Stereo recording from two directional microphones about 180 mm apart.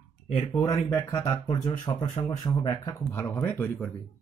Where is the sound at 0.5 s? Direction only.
15° left (ahead or behind).